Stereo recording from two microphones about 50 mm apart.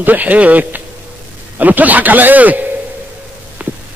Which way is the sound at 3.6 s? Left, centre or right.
Right.